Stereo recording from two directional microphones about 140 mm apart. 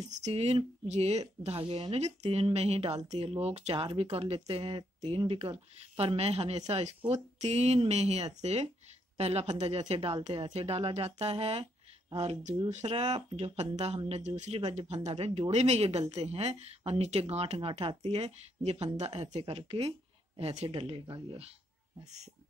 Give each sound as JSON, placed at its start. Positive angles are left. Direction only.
{"t": 0.1, "sound": "speech", "side_deg": -50}
{"t": 3.7, "sound": "speech", "side_deg": -40}